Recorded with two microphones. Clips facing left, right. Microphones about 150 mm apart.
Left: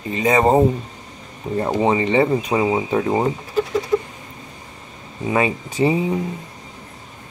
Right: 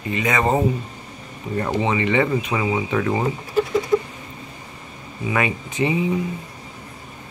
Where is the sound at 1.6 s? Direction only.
35° left (ahead or behind).